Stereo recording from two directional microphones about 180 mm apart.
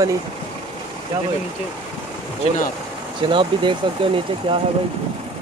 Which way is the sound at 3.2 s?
25° right (ahead or behind).